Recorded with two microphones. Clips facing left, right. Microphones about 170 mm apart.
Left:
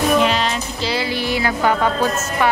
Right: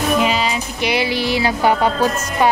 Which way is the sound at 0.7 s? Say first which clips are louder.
Right 5 dB; 20° right (ahead or behind).